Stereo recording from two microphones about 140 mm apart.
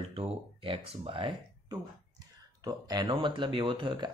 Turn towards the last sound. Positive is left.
turn(degrees=-35)  # may be behind; listen again after turning